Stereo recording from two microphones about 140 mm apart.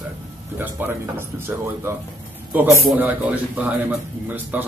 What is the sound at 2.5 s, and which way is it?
Speech, 15° right (ahead or behind).